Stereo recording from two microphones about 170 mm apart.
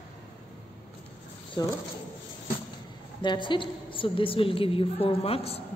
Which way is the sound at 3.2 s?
25° left (ahead or behind).